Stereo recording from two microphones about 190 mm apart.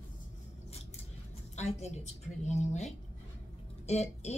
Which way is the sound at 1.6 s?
35° left (ahead or behind).